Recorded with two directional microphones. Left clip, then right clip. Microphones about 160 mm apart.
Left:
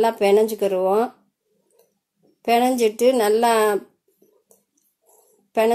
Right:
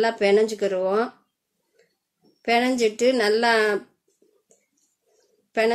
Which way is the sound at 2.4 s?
15° left (ahead or behind).